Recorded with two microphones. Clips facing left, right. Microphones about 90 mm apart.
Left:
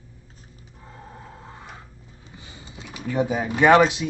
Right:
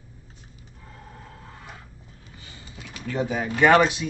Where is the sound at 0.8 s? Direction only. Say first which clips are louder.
Left 3 dB; 25° left (ahead or behind).